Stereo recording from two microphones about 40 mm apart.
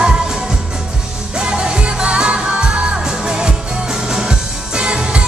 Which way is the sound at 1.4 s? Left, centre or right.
Right.